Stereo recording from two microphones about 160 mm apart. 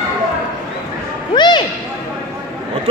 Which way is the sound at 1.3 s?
30° left (ahead or behind).